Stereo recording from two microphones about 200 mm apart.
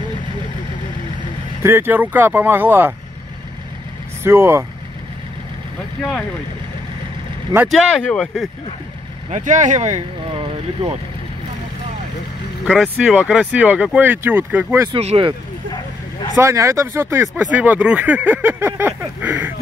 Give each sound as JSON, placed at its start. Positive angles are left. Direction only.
{"t": 1.6, "sound": "speech", "side_deg": -10}
{"t": 4.2, "sound": "speech", "side_deg": -10}
{"t": 7.5, "sound": "speech", "side_deg": 0}
{"t": 9.3, "sound": "speech", "side_deg": -40}
{"t": 12.6, "sound": "speech", "side_deg": -5}
{"t": 14.9, "sound": "speech", "side_deg": -30}
{"t": 16.3, "sound": "speech", "side_deg": -15}